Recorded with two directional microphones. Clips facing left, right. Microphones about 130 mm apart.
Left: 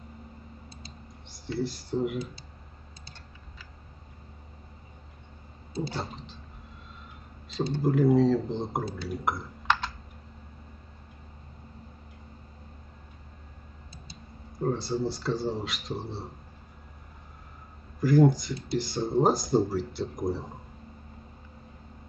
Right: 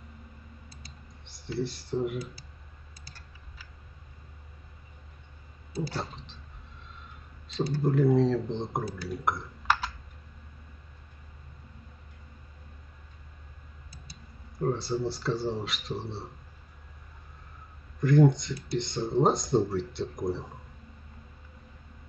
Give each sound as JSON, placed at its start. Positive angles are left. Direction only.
{"t": 1.2, "sound": "speech", "side_deg": 0}
{"t": 5.7, "sound": "a sound", "side_deg": 25}
{"t": 5.9, "sound": "speech", "side_deg": 0}
{"t": 7.8, "sound": "speech", "side_deg": 0}
{"t": 8.8, "sound": "speech", "side_deg": 25}
{"t": 9.2, "sound": "typing", "side_deg": 0}
{"t": 14.7, "sound": "speech", "side_deg": 0}
{"t": 18.0, "sound": "speech", "side_deg": 5}